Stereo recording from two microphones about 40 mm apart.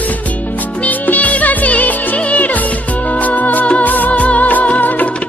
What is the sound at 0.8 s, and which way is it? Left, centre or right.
Music, left.